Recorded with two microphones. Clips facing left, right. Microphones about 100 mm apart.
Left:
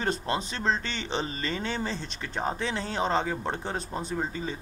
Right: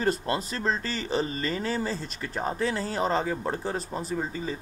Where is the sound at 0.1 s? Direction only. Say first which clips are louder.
Right 1 dB; 5° right (ahead or behind).